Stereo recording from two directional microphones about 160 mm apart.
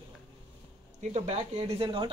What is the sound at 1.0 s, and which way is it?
Speech, 40° right (ahead or behind).